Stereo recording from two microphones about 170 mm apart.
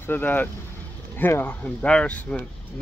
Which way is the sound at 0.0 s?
10° left (ahead or behind).